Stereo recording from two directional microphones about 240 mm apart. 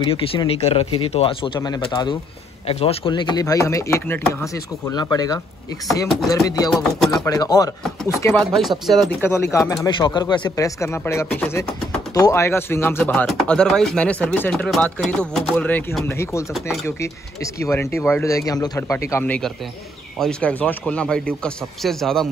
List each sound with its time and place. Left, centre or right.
0.0 s speech: left; by 9.1 s centre
9.5 s speech: centre